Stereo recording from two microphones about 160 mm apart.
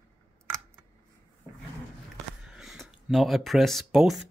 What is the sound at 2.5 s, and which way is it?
Speech, centre (ahead or behind).